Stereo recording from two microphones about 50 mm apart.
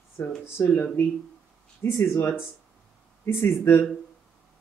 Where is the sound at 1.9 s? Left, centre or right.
Left.